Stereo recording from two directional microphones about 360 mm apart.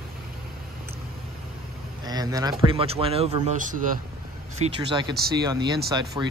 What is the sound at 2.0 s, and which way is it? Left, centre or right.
Speech, centre.